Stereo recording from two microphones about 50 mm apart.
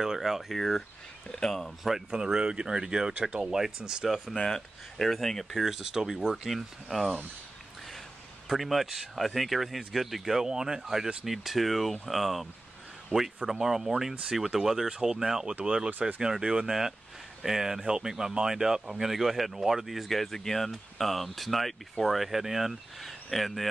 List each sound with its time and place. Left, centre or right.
0.0 s speech: centre
1.8 s speech: centre
4.4 s speech: centre
5.5 s speech: centre
8.5 s speech: centre
13.1 s speech: right
13.5 s speech: centre